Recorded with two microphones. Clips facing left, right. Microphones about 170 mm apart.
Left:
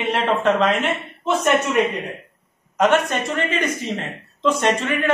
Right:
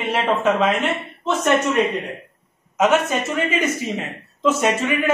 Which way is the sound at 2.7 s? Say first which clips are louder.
Even; 5° right (ahead or behind).